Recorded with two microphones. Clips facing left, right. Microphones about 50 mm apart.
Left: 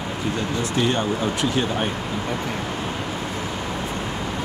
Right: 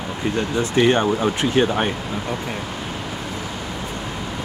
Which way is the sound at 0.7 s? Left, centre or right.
Right.